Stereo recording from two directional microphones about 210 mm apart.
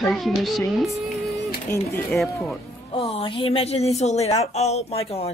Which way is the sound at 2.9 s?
25° left (ahead or behind).